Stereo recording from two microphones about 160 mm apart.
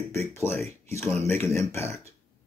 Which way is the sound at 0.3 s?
15° left (ahead or behind).